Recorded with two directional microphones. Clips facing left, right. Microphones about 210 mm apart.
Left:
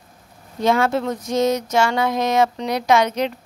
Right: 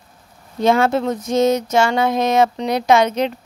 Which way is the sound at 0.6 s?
25° right (ahead or behind).